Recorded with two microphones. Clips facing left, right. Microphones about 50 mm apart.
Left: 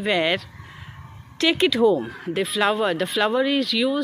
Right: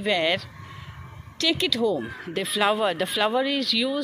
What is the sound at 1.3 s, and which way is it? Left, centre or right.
Speech, left.